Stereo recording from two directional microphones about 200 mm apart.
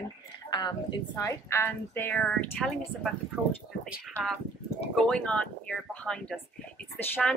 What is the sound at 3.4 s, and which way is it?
Speech, 10° right (ahead or behind).